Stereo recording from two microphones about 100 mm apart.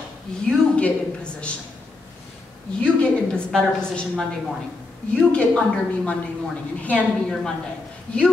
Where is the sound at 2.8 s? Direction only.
10° left (ahead or behind).